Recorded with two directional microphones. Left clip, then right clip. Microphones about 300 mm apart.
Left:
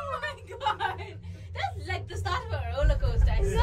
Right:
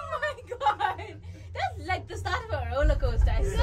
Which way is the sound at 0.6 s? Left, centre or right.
Right.